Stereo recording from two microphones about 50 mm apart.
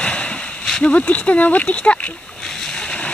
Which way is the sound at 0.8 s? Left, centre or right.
Left.